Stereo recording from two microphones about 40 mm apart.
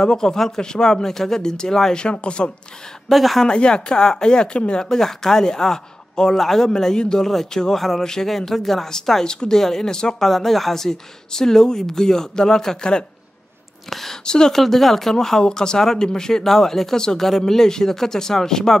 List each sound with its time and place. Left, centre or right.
0.0 s speech: centre
3.1 s speech: centre
3.4 s speech: left
4.8 s speech: centre
10.2 s speech: centre
13.8 s a sound: centre
14.2 s speech: left
14.5 s speech: centre